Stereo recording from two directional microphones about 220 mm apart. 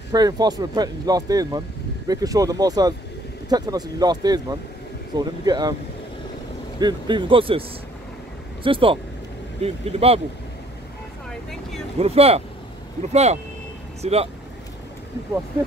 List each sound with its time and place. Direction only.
0.1 s speech: 20° right (ahead or behind)
6.8 s speech: 20° right (ahead or behind)
8.6 s speech: 25° right (ahead or behind)
12.0 s speech: 25° right (ahead or behind)